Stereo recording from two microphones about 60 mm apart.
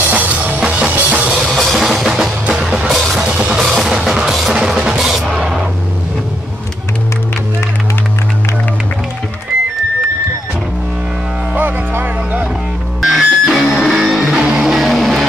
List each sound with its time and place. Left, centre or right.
0.1 s music: right
1.3 s music: centre
2.9 s music: centre
3.3 s music: centre
11.5 s music: right
13.0 s music: centre